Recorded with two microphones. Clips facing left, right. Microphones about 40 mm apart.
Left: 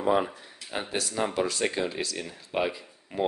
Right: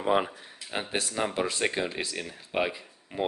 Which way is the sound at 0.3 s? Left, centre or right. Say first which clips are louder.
Even; centre.